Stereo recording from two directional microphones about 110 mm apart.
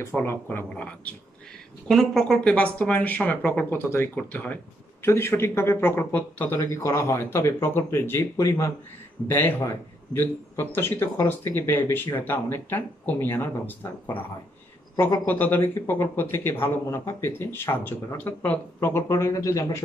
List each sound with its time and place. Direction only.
0.1 s a man's voice: 20° left (ahead or behind)
10.1 s a man's voice: 20° left (ahead or behind)
15.2 s a man's voice: 15° left (ahead or behind)
19.0 s a man's voice: 30° left (ahead or behind)